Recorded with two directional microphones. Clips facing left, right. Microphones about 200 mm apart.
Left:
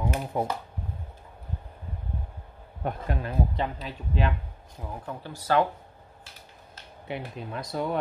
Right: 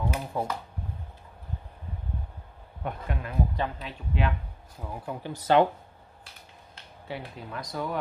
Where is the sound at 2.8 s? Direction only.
35° left (ahead or behind).